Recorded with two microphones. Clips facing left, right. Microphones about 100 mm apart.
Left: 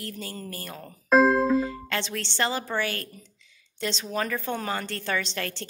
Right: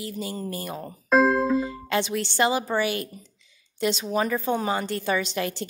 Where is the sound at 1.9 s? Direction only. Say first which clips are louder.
Right 10 dB; 15° right (ahead or behind).